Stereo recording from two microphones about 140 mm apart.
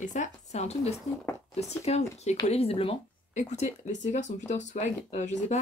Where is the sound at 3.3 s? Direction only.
55° left (ahead or behind).